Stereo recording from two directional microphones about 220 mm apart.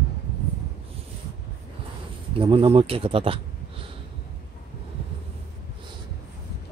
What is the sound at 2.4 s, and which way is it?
Speech, 25° right (ahead or behind).